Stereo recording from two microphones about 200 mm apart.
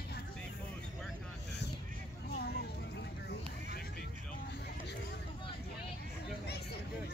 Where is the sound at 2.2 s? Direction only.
50° left (ahead or behind).